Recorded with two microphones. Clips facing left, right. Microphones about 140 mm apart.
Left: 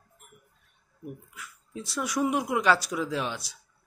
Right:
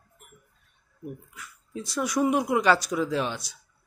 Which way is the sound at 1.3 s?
Centre (ahead or behind).